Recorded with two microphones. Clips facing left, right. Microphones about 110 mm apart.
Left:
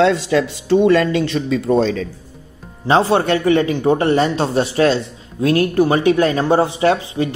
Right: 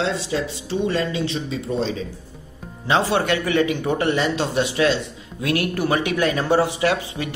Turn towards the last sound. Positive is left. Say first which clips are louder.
# left 6 dB
turn(degrees=30)  # may be behind; listen again after turning